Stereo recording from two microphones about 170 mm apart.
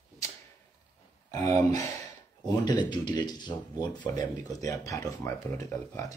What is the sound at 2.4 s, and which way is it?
Speech, 25° left (ahead or behind).